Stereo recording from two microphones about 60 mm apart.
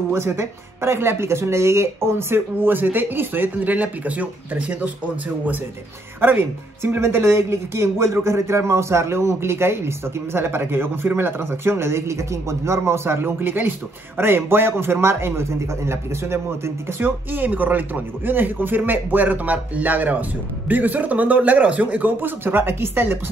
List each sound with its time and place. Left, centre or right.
0.1 s speech: right
6.2 s speech: right
17.0 s a man's voice: right